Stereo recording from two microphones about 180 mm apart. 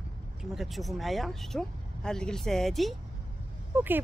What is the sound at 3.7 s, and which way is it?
Speech, 10° right (ahead or behind).